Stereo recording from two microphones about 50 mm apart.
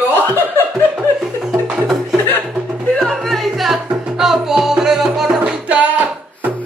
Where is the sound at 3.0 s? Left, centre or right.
Centre.